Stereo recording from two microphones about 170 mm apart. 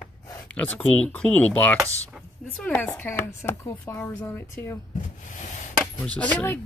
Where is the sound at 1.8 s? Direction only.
15° right (ahead or behind).